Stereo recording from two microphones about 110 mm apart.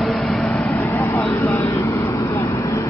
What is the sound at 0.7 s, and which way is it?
Vehicle, 20° left (ahead or behind).